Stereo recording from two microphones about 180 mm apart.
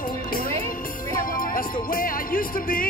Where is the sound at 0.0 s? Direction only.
55° left (ahead or behind).